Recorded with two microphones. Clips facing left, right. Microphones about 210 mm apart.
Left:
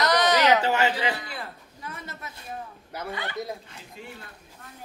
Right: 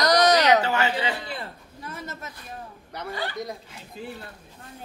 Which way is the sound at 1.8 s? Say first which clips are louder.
Right 3 dB; 35° right (ahead or behind).